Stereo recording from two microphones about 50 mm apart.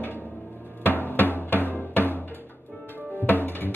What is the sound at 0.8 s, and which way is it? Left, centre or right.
Drum, left.